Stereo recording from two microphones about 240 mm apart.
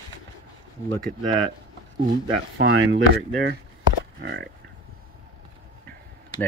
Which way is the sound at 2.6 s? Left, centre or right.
Right.